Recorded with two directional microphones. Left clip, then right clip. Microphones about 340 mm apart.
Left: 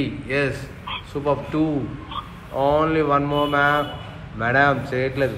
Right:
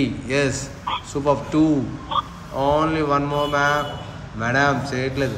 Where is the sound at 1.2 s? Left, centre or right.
Centre.